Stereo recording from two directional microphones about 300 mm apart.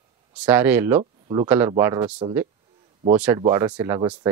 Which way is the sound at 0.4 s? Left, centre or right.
Centre.